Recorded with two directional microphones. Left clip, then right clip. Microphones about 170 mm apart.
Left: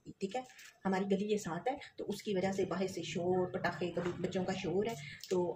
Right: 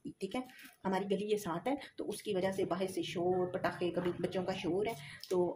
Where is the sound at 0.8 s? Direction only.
50° right (ahead or behind).